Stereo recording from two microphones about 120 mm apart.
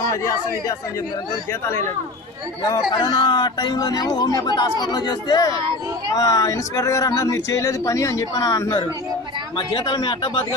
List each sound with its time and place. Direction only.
0.1 s speech: 25° left (ahead or behind)
2.9 s speech: 40° left (ahead or behind)
9.6 s speech: 40° left (ahead or behind)